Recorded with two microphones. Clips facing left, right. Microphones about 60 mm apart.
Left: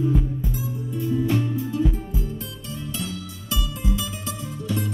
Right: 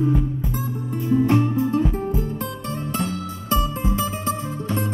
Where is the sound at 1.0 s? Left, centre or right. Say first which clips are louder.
Right 5 dB; right.